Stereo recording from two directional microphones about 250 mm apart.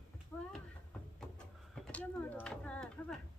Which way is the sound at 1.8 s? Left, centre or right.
Centre.